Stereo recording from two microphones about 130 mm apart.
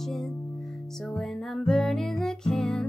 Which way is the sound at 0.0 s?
Centre (ahead or behind).